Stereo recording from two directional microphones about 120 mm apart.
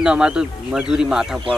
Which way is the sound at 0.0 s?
5° right (ahead or behind).